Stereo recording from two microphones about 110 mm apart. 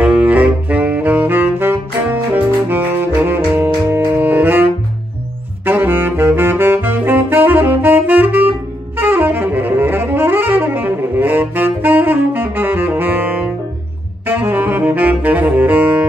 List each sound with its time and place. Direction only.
0.0 s saxophone: 15° right (ahead or behind)
5.7 s saxophone: 20° right (ahead or behind)